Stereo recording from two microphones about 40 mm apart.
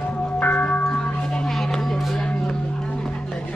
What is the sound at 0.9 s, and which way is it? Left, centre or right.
Music, left.